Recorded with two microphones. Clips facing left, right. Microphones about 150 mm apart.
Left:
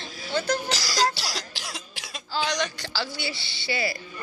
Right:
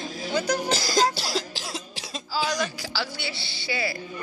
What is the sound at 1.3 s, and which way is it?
Cough, 30° right (ahead or behind).